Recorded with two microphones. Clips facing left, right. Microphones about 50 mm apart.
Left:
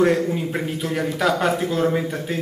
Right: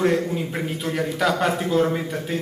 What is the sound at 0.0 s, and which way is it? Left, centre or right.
A man's voice, centre.